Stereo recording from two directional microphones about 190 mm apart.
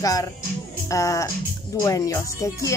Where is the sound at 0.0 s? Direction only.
20° left (ahead or behind).